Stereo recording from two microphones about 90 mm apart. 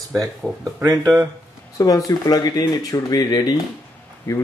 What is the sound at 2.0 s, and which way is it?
Speech, 45° left (ahead or behind).